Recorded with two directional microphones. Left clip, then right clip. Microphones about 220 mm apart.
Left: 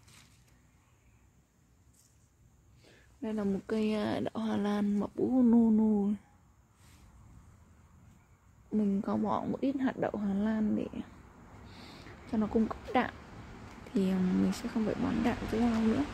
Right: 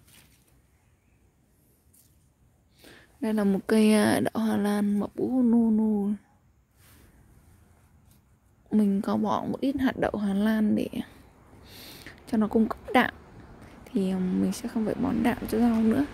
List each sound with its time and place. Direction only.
2.8 s speech: 40° right (ahead or behind); by 6.1 s 10° right (ahead or behind)
8.6 s a woman's voice: 30° right (ahead or behind)
11.7 s a sound: 35° right (ahead or behind)
13.9 s speech: 20° right (ahead or behind)